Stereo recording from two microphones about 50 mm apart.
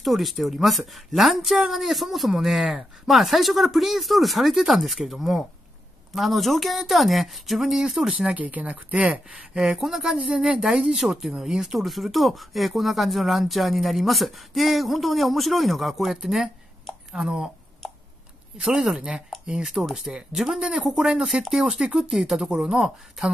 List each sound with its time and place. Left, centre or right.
0.0 s speech: centre
8.4 s speech: right
9.8 s speech: centre
10.3 s speech: right
10.9 s speech: centre
17.8 s a sound: centre
18.6 s speech: centre
19.4 s speech: centre
19.7 s speech: centre